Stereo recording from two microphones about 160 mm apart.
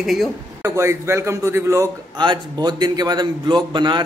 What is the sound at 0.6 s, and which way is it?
A man's voice, 15° right (ahead or behind).